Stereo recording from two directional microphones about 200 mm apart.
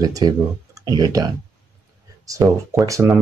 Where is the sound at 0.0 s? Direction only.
20° right (ahead or behind).